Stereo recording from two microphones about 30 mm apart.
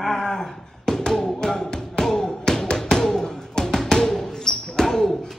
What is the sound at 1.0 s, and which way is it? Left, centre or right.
Music, left.